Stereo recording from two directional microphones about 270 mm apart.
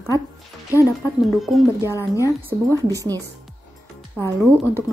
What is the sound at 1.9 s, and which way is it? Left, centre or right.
Speech, centre.